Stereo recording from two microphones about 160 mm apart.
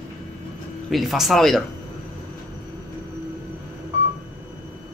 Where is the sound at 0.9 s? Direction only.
Centre (ahead or behind).